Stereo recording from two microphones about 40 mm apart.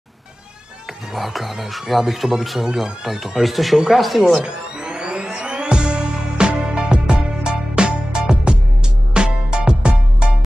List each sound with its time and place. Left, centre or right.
1.1 s speech: centre
4.4 s music: right